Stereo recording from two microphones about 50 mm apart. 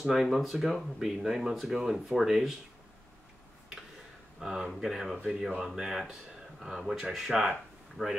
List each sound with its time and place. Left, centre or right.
0.0 s speech: centre
4.4 s speech: centre
8.0 s speech: right